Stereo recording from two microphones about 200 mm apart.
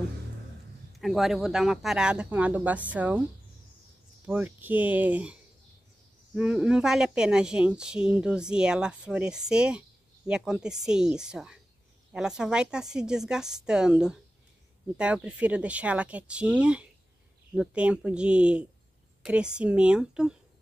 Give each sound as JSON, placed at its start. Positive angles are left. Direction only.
{"t": 0.9, "sound": "speech", "side_deg": 0}
{"t": 4.3, "sound": "speech", "side_deg": -10}